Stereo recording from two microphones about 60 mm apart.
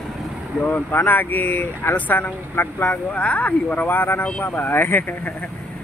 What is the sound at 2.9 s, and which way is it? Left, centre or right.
Speech, left.